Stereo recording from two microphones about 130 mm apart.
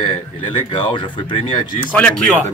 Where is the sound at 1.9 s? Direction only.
10° left (ahead or behind).